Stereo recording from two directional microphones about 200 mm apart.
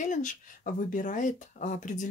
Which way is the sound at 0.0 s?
40° left (ahead or behind).